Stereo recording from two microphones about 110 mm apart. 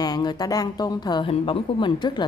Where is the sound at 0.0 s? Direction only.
40° left (ahead or behind).